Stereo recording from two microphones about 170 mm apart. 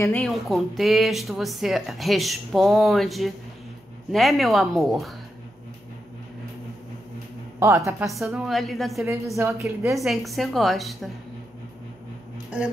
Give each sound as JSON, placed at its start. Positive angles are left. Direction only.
{"t": 0.1, "sound": "speech", "side_deg": 0}
{"t": 7.5, "sound": "a woman's voice", "side_deg": -15}
{"t": 8.0, "sound": "speech", "side_deg": 0}
{"t": 9.0, "sound": "a woman's voice", "side_deg": -15}
{"t": 9.9, "sound": "speech", "side_deg": 0}